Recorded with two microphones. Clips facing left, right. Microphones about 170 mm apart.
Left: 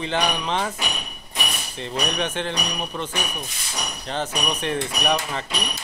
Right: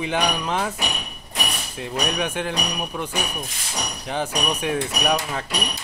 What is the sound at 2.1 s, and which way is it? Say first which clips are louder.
Speech: right 1 dB; 10° right (ahead or behind).